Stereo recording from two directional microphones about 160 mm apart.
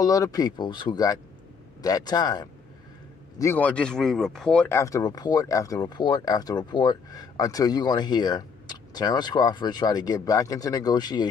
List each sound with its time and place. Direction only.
0.0 s speech: 20° left (ahead or behind)
3.3 s speech: 15° left (ahead or behind)